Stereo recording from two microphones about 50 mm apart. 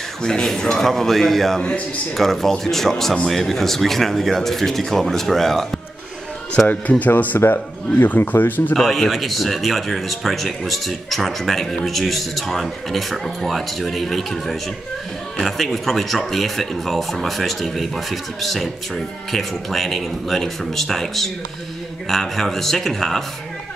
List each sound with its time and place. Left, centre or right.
0.2 s speech: centre
6.7 s speech: left
8.7 s speech: centre